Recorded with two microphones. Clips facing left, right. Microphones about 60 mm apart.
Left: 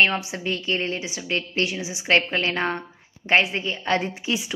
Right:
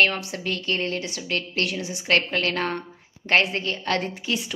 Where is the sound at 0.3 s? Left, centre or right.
Left.